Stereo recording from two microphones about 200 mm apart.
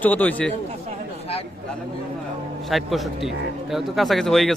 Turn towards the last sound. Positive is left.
turn(degrees=0)  # may be behind; listen again after turning